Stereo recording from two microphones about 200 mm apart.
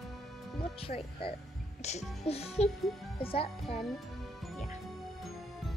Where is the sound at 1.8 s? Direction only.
35° left (ahead or behind).